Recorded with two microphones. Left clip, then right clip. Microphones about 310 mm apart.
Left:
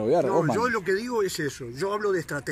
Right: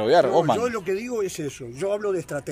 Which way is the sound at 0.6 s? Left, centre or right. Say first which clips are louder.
Even; centre.